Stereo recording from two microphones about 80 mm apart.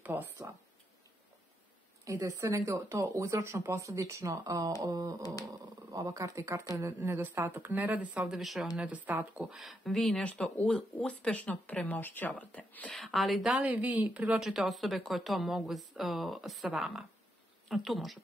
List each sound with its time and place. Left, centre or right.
0.0 s a sound: right
2.0 s speech: right
4.8 s a sound: right
5.4 s speech: right
6.9 s speech: right
8.2 s speech: centre
8.7 s speech: centre
9.6 s speech: centre
10.2 s speech: centre
13.0 s speech: centre
13.7 s speech: centre